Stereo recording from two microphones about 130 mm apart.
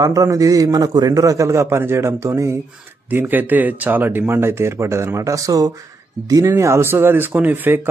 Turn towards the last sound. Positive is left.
turn(degrees=-15)  # may be behind; listen again after turning